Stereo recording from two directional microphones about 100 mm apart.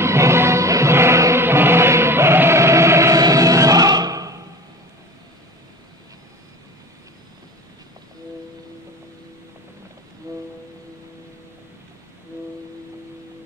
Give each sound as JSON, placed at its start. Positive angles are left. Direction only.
{"t": 0.0, "sound": "music", "side_deg": -25}
{"t": 10.3, "sound": "music", "side_deg": -30}